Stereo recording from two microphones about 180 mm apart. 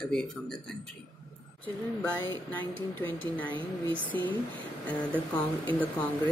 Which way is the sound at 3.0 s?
10° left (ahead or behind).